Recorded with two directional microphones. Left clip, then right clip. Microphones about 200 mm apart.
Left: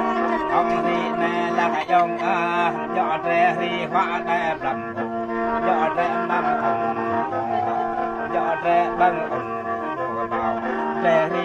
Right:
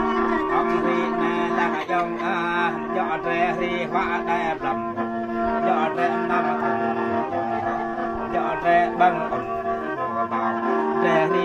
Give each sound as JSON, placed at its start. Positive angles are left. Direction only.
{"t": 0.0, "sound": "music", "side_deg": 55}
{"t": 1.9, "sound": "music", "side_deg": 25}
{"t": 3.9, "sound": "music", "side_deg": 25}
{"t": 5.7, "sound": "music", "side_deg": 0}
{"t": 8.6, "sound": "music", "side_deg": -15}